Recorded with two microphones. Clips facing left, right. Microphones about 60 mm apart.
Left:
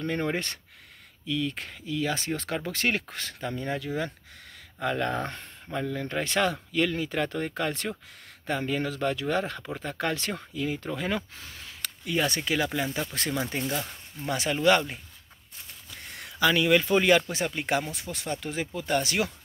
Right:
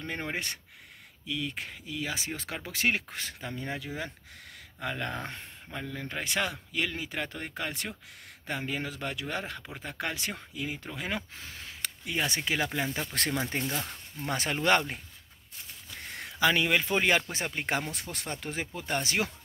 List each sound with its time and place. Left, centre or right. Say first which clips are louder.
0.0 s speech: left 6 dB; centre
13.1 s speech: even; right
14.3 s speech: left 3 dB; right
16.1 s speech: left 2 dB; right
17.3 s speech: left 4 dB; right